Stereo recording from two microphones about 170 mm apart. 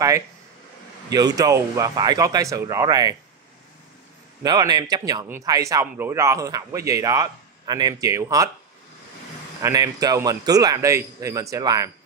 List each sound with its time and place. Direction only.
1.1 s a man's voice: 20° right (ahead or behind)
4.4 s a man's voice: 20° right (ahead or behind)
9.6 s a man's voice: 20° right (ahead or behind)